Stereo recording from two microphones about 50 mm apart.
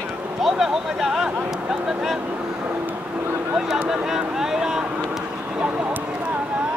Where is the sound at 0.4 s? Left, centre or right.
Centre.